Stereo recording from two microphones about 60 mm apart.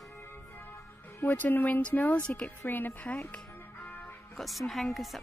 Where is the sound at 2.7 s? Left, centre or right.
Left.